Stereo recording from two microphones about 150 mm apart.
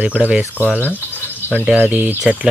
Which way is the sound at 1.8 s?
10° right (ahead or behind).